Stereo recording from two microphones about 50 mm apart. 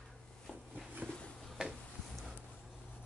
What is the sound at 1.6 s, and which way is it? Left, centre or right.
Tick-tock, centre.